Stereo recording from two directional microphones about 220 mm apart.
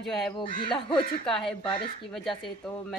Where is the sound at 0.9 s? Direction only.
Centre (ahead or behind).